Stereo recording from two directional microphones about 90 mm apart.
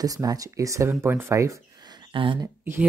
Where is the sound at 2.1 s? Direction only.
75° right (ahead or behind).